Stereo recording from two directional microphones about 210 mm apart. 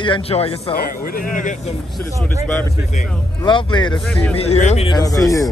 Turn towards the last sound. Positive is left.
turn(degrees=15)  # may be behind; listen again after turning